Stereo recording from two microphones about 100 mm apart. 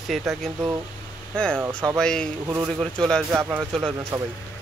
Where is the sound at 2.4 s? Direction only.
25° right (ahead or behind).